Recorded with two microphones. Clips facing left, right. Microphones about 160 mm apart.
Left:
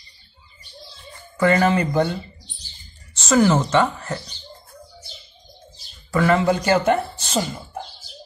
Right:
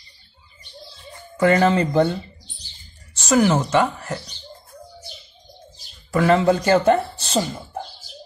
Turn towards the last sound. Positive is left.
turn(degrees=-30)  # may be behind; listen again after turning